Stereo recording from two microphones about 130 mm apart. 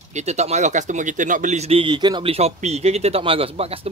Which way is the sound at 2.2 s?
50° right (ahead or behind).